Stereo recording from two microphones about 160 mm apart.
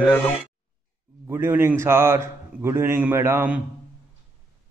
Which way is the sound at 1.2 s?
15° right (ahead or behind).